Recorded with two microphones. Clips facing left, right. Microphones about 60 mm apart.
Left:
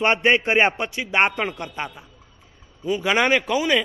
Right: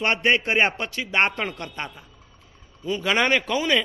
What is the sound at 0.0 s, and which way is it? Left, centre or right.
A man's voice, left.